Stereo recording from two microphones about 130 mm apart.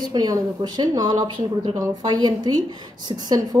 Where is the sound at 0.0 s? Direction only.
30° right (ahead or behind).